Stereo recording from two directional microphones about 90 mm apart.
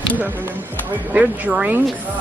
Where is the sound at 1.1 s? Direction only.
15° right (ahead or behind).